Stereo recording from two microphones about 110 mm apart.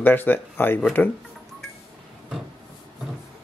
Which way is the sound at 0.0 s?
20° left (ahead or behind).